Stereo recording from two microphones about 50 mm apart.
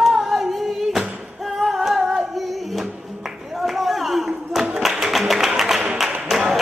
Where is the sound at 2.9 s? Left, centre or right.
Centre.